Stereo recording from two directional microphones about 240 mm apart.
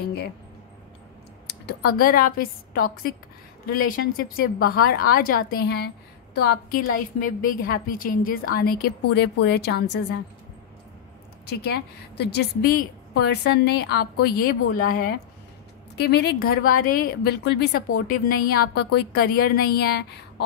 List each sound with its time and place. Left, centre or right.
1.5 s a woman's voice: left
11.6 s a woman's voice: left